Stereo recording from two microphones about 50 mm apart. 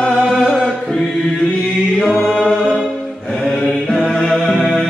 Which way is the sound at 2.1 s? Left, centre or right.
Centre.